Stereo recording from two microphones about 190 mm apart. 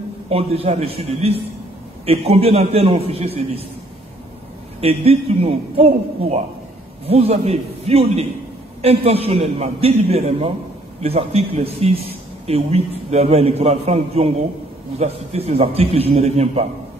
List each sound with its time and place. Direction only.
0.3 s a man's voice: 30° right (ahead or behind)
4.7 s a man's voice: 30° right (ahead or behind)